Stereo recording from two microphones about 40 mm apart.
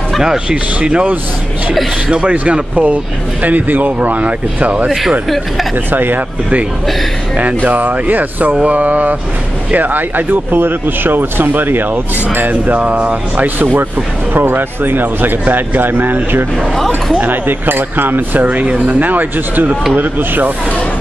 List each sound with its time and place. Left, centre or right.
0.5 s speech: right
2.2 s speech: right
5.9 s speech: right
7.3 s speech: right
14.3 s speech: right
16.7 s speech: centre
17.2 s speech: right